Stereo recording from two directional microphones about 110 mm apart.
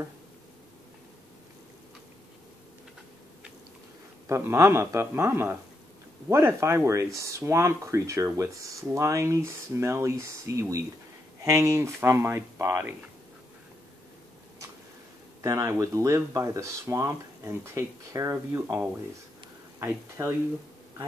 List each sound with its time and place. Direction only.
4.3 s speech: 25° right (ahead or behind)
15.4 s speech: 30° right (ahead or behind)